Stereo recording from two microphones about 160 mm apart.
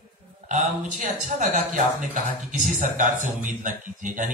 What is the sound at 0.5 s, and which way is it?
A man's voice, 50° right (ahead or behind).